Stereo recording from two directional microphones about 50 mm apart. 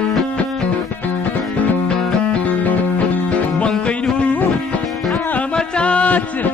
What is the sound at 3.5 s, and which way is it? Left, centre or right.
Music, left.